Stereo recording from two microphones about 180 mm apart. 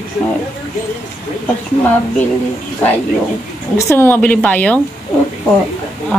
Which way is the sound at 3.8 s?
15° left (ahead or behind).